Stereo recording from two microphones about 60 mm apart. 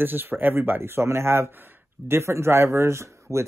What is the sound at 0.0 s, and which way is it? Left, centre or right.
Speech, right.